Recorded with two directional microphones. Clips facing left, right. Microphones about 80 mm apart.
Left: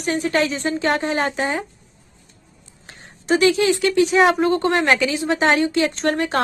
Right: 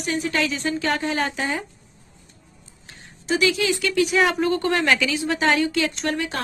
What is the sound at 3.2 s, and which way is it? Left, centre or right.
Speech, left.